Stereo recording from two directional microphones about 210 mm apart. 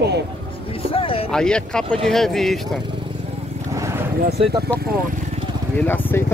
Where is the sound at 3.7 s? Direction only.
15° right (ahead or behind).